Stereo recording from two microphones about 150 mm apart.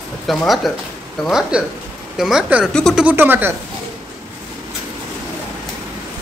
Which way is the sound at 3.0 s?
15° right (ahead or behind).